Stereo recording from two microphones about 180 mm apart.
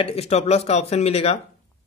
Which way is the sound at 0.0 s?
35° left (ahead or behind).